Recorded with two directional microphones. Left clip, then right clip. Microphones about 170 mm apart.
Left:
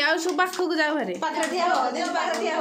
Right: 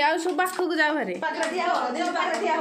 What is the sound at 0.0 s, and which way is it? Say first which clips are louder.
A woman's voice: even; 10° left (ahead or behind).